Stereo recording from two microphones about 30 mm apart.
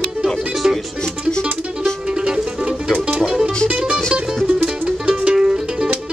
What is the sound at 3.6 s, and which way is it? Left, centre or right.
Music, right.